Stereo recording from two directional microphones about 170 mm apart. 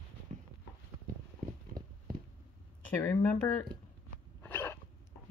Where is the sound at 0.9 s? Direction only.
15° right (ahead or behind).